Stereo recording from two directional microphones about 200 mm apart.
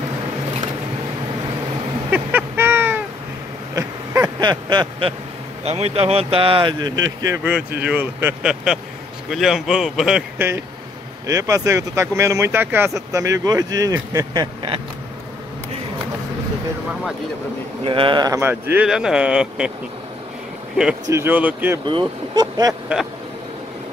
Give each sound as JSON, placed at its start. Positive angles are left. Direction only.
{"t": 2.0, "sound": "a sound", "side_deg": -10}
{"t": 5.9, "sound": "speech", "side_deg": -30}
{"t": 7.4, "sound": "a man's voice", "side_deg": -5}
{"t": 11.2, "sound": "speech", "side_deg": -15}
{"t": 17.8, "sound": "speech", "side_deg": -25}
{"t": 21.1, "sound": "speech", "side_deg": -10}
{"t": 21.8, "sound": "speech", "side_deg": -20}